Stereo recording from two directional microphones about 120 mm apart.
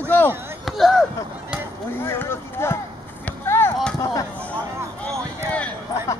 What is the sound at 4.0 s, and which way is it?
Speech, 30° left (ahead or behind).